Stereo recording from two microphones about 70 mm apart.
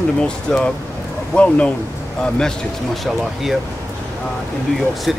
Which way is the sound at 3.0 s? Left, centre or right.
Centre.